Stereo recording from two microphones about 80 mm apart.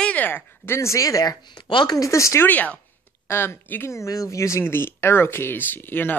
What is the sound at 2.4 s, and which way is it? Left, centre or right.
Speech, centre.